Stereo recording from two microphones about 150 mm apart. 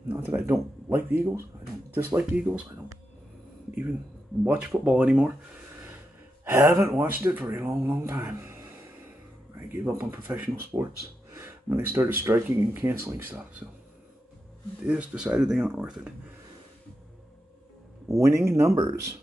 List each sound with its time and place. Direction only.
0.1 s speech: 10° right (ahead or behind)
4.5 s speech: 10° right (ahead or behind)
6.4 s speech: 15° right (ahead or behind)
9.7 s speech: 15° right (ahead or behind)
14.9 s speech: 5° right (ahead or behind)
18.1 s speech: 20° right (ahead or behind)